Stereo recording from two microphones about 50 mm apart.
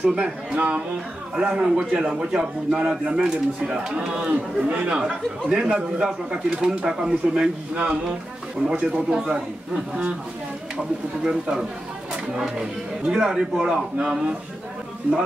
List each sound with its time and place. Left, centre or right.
0.0 s speech: centre
1.3 s speech: centre
11.2 s speech: centre